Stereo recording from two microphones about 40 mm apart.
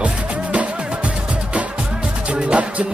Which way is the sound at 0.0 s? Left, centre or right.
Right.